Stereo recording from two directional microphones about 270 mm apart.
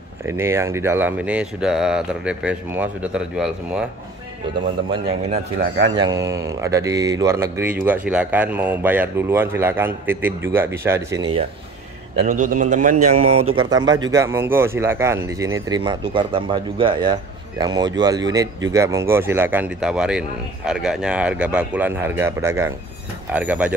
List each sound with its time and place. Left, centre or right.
0.4 s speech: centre
5.3 s speech: right
5.9 s speech: centre
12.2 s a man's voice: right
13.0 s speech: right
13.6 s speech: centre